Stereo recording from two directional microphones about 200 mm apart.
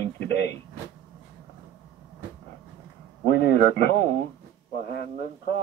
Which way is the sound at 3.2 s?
55° left (ahead or behind).